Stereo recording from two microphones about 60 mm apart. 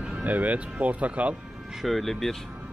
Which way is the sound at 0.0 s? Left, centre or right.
Right.